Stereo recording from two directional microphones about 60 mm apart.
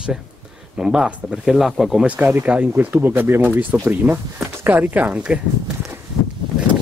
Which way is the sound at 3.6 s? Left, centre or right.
Right.